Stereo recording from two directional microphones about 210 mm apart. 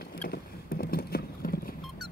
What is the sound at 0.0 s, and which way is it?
Vehicle, 45° left (ahead or behind).